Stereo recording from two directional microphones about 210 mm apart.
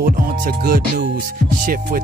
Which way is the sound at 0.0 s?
45° right (ahead or behind).